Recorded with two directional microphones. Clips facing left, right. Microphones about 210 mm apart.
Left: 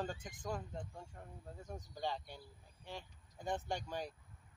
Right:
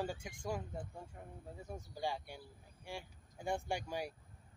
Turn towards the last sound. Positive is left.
turn(degrees=-10)  # may be behind; listen again after turning